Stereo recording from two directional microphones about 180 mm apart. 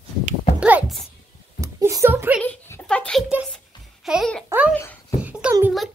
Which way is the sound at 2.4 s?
10° left (ahead or behind).